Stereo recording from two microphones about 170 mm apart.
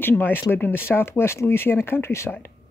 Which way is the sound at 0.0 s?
10° left (ahead or behind).